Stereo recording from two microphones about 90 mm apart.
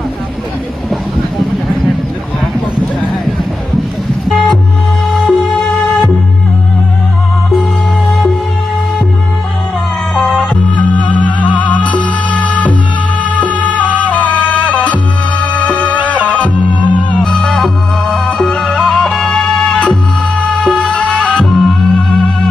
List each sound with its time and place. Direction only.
5.1 s music: 5° left (ahead or behind)
10.1 s music: 10° left (ahead or behind)